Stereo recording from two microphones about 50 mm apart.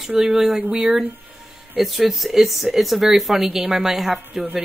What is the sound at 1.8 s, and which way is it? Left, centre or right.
A woman's voice, centre.